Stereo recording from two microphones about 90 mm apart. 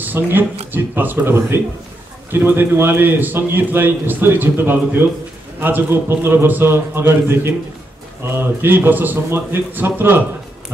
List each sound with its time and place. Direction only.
0.0 s a man's voice: 20° right (ahead or behind)